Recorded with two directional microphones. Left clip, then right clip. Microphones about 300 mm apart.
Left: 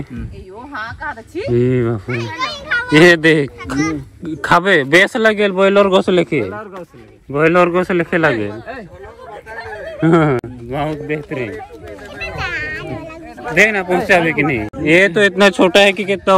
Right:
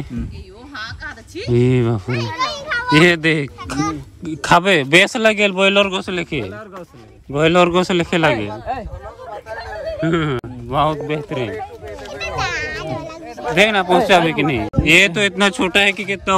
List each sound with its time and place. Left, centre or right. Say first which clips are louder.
1.5 s speech: left 1 dB; centre
2.0 s children playing: even; right
2.9 s speech: left 4 dB; centre
5.9 s a man's voice: left 9 dB; centre
7.3 s speech: left 1 dB; centre
10.0 s speech: left 8 dB; centre
10.7 s speech: right 3 dB; centre
12.2 s a sound: even; right
13.6 s speech: left 1 dB; centre